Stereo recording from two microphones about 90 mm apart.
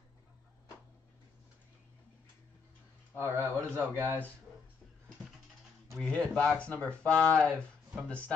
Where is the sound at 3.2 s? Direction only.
25° right (ahead or behind).